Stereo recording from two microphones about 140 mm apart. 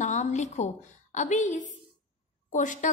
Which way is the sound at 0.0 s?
60° left (ahead or behind).